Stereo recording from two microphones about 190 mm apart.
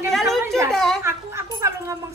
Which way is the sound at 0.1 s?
Centre (ahead or behind).